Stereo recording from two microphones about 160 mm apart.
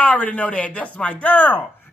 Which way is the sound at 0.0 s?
10° left (ahead or behind).